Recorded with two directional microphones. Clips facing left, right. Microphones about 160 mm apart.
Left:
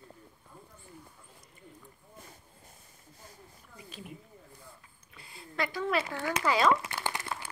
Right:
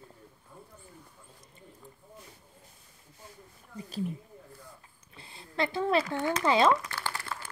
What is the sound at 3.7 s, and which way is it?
Speech, 35° right (ahead or behind).